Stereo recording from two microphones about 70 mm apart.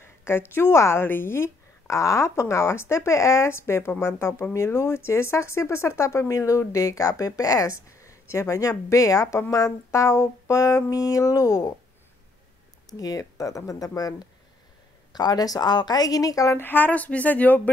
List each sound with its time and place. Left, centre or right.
0.0 s a woman's voice: left
9.7 s speech: left
12.9 s speech: left
15.1 s speech: left
16.5 s speech: left